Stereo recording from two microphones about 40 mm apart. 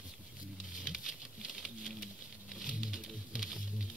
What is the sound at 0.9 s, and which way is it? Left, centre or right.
Patter, centre.